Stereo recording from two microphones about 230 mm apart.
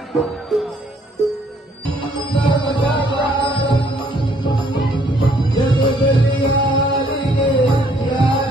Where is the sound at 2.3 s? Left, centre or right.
Left.